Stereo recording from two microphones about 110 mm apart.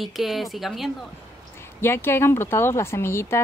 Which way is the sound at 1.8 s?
20° left (ahead or behind).